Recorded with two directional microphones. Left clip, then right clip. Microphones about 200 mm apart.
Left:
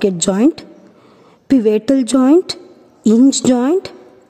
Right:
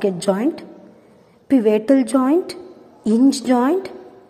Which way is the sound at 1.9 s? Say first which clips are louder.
Left 2 dB; 30° left (ahead or behind).